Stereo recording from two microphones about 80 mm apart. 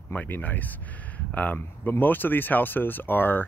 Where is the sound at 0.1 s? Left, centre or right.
Centre.